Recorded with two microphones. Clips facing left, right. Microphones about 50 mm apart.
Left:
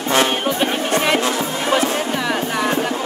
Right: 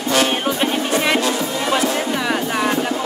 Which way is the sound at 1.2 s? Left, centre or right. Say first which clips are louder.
Even; left.